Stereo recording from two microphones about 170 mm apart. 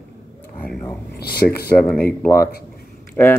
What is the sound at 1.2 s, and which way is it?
Speech, 65° left (ahead or behind).